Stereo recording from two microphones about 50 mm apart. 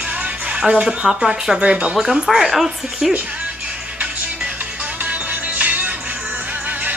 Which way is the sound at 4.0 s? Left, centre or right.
Right.